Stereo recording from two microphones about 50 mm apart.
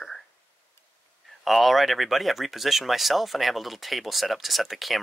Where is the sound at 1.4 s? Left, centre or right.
Centre.